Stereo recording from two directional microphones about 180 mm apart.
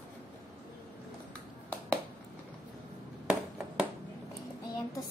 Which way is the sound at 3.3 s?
5° right (ahead or behind).